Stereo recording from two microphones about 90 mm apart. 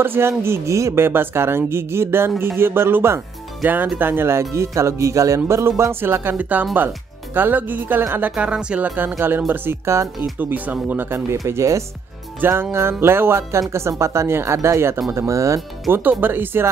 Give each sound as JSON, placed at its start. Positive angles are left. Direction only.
{"t": 0.0, "sound": "speech", "side_deg": -25}
{"t": 8.4, "sound": "speech", "side_deg": -10}
{"t": 15.9, "sound": "speech", "side_deg": -20}